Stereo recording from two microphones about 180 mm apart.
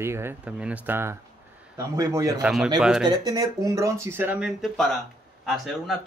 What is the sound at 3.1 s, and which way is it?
Speech, 25° right (ahead or behind).